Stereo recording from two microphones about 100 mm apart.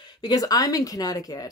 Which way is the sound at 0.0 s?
45° left (ahead or behind).